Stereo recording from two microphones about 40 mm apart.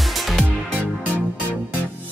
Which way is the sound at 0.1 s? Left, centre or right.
Centre.